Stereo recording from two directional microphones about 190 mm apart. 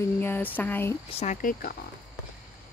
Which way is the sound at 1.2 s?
45° left (ahead or behind).